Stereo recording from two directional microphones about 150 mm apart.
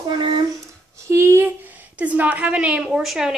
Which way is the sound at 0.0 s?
30° right (ahead or behind).